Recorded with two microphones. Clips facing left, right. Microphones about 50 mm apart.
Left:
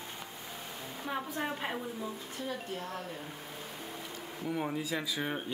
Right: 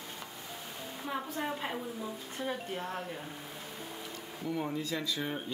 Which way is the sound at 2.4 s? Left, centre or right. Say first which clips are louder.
Right 2 dB; right.